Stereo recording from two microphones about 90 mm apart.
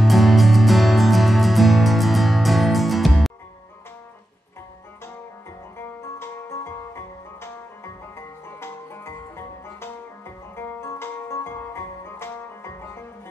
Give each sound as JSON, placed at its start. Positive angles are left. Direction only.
{"t": 0.0, "sound": "music", "side_deg": 0}
{"t": 5.8, "sound": "music", "side_deg": 25}